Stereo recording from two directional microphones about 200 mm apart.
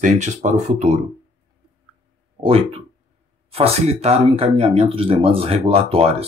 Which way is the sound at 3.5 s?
30° right (ahead or behind).